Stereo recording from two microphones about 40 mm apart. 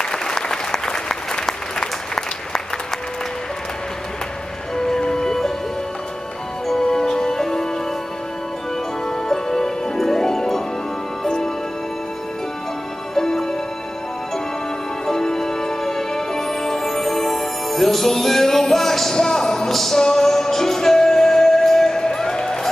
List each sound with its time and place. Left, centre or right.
0.0 s applause: centre
4.7 s music: centre
6.7 s music: centre
9.1 s music: centre
13.1 s music: centre
15.0 s music: centre